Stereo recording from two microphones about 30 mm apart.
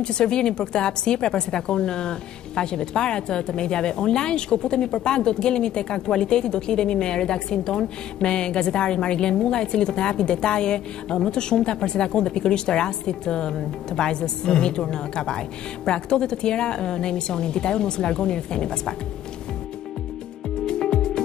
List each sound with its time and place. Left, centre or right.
0.0 s a woman's voice: left
20.6 s music: left